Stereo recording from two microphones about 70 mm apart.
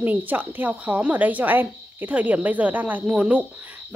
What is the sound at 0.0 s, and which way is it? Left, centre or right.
A woman's voice, right.